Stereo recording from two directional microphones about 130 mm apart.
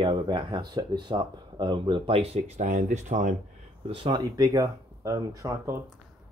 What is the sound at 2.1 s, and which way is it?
Speech, 55° right (ahead or behind).